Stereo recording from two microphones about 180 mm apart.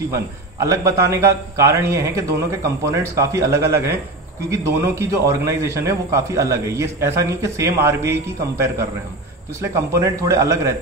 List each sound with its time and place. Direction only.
0.1 s a man's voice: 15° right (ahead or behind)